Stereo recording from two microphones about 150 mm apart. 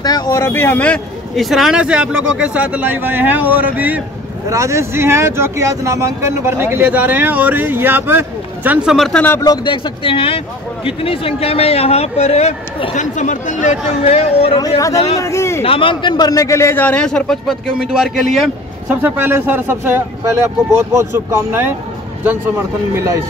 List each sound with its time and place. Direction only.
0.0 s speech: 25° left (ahead or behind); by 8.7 s 15° right (ahead or behind)
8.8 s speech: centre (ahead or behind)
9.4 s a man's voice: 30° left (ahead or behind)
15.1 s a man's voice: 20° left (ahead or behind)
15.6 s a man's voice: 35° left (ahead or behind); by 18.2 s centre (ahead or behind)
18.9 s speech: 15° right (ahead or behind)
22.9 s speech: 20° right (ahead or behind)